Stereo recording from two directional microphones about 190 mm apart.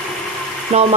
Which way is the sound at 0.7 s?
35° right (ahead or behind).